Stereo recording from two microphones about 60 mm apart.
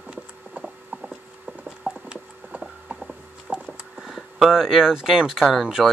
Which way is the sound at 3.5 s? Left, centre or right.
Centre.